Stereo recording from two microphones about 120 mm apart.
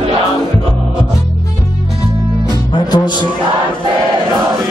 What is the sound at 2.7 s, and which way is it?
Music, 35° left (ahead or behind).